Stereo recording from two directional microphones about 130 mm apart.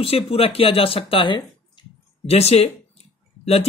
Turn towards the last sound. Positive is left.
turn(degrees=55)  # may be behind; listen again after turning